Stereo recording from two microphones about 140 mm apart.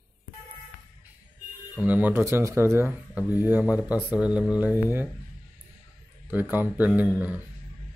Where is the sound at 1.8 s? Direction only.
10° right (ahead or behind).